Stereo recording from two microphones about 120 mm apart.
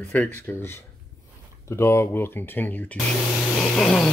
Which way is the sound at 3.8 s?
5° left (ahead or behind).